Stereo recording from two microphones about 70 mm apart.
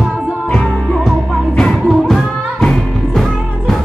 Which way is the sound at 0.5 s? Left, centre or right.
Centre.